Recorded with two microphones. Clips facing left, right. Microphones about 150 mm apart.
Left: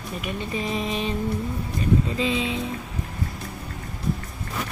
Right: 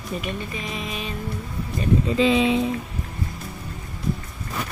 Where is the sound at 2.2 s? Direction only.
85° right.